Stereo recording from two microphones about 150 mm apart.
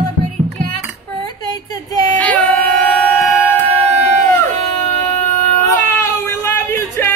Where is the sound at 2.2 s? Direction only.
10° left (ahead or behind).